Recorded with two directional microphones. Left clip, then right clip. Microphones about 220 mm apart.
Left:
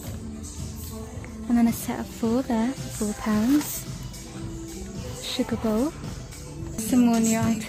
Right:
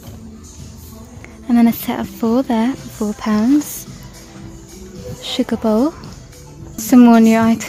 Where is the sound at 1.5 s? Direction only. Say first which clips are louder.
Right 9 dB; 20° right (ahead or behind).